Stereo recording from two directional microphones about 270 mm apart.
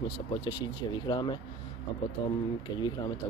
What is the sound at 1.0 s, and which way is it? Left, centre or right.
Speech, centre.